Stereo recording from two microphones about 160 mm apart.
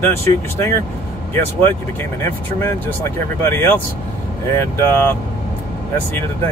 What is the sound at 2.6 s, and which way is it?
Speech, 15° left (ahead or behind).